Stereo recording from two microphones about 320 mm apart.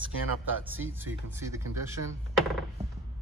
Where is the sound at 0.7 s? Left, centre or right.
Centre.